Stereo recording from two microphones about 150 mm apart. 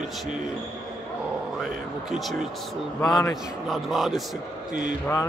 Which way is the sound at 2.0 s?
Centre (ahead or behind).